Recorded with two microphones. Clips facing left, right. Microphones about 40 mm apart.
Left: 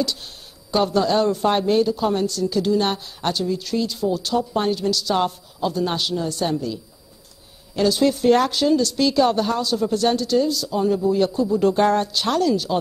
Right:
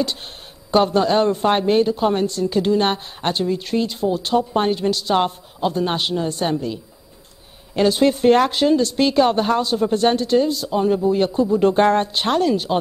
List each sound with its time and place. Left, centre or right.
0.0 s a man's voice: right
7.7 s a man's voice: right